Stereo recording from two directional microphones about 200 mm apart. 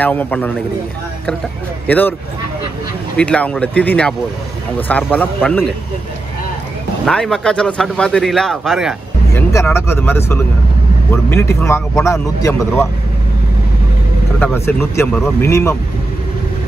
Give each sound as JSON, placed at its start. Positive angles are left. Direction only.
{"t": 0.0, "sound": "speech", "side_deg": 10}
{"t": 1.9, "sound": "speech", "side_deg": 10}
{"t": 3.2, "sound": "speech", "side_deg": 5}
{"t": 7.1, "sound": "a man's voice", "side_deg": 5}
{"t": 9.3, "sound": "speech", "side_deg": 15}
{"t": 14.4, "sound": "speech", "side_deg": 10}